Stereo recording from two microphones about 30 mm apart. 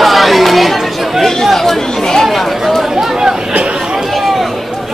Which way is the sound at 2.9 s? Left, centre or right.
Centre.